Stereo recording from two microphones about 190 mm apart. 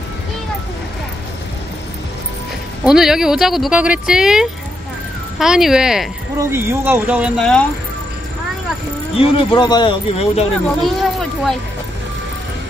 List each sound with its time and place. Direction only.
2.8 s speech: centre (ahead or behind)
9.1 s speech: 25° left (ahead or behind)
10.8 s speech: centre (ahead or behind)